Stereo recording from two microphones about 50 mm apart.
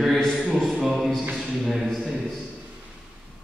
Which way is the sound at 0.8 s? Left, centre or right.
Centre.